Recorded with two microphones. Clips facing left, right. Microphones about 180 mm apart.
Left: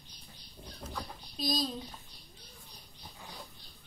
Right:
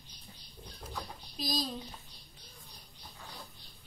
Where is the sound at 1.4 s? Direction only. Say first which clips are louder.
Left 2 dB; centre (ahead or behind).